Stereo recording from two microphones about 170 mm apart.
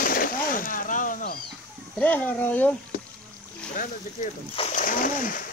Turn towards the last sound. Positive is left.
turn(degrees=55)  # may be behind; listen again after turning